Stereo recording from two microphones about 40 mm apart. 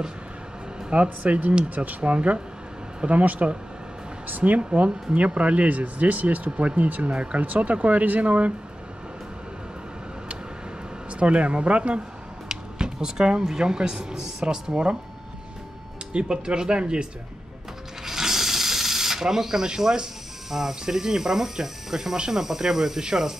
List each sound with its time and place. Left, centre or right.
0.9 s speech: right
11.1 s speech: right
12.4 s a sound: centre
13.6 s speech: centre
16.1 s speech: right
18.0 s speech: centre